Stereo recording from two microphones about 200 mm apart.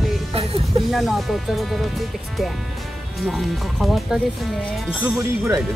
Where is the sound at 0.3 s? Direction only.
30° right (ahead or behind).